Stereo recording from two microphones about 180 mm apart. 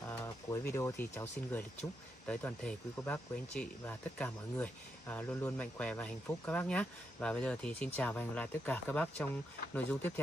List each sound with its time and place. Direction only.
0.5 s speech: 15° left (ahead or behind)